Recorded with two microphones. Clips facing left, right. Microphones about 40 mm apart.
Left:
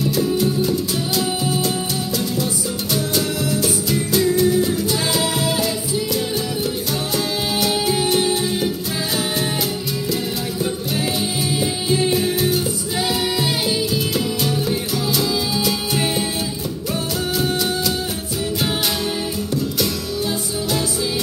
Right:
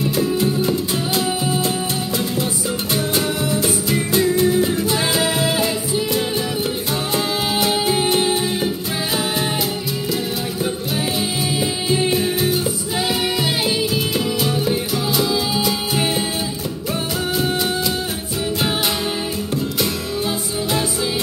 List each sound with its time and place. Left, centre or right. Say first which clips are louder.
0.0 s music: even; right
2.9 s music: even; right
7.2 s music: right 2 dB; right
11.6 s music: even; centre
14.5 s music: right 1 dB; centre